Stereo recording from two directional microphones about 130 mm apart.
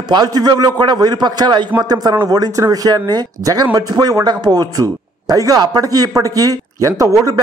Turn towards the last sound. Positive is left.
turn(degrees=-25)  # may be behind; listen again after turning